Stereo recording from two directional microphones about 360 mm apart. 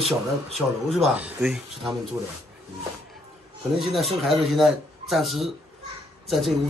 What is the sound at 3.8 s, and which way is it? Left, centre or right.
Speech, centre.